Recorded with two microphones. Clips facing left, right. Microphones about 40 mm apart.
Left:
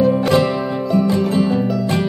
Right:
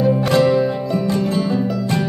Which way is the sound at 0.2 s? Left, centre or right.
Centre.